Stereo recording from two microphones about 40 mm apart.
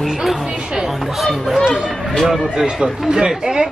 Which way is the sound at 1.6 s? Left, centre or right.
Centre.